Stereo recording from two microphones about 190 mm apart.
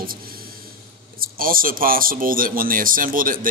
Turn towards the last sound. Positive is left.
turn(degrees=-45)  # may be behind; listen again after turning